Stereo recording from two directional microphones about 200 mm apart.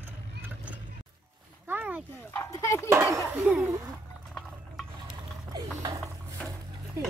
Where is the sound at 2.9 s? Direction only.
15° right (ahead or behind).